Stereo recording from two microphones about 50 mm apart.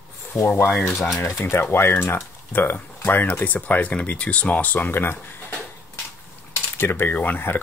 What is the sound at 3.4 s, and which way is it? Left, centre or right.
Speech, left.